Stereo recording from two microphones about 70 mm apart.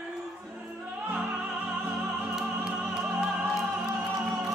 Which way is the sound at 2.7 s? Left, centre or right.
Centre.